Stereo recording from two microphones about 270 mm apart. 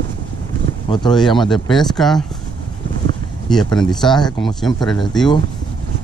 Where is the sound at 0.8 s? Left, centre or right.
Centre.